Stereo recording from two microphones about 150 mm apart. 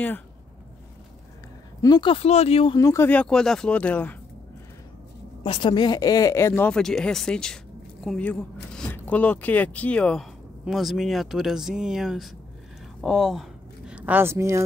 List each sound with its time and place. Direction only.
1.8 s speech: 30° left (ahead or behind)
2.8 s speech: 20° left (ahead or behind)
5.4 s speech: 35° left (ahead or behind); by 14.6 s 20° right (ahead or behind)